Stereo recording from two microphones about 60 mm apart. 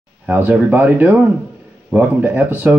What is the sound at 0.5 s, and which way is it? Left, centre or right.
Speech, right.